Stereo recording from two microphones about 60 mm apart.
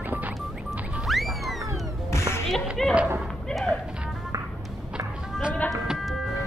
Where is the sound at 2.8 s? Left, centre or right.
Centre.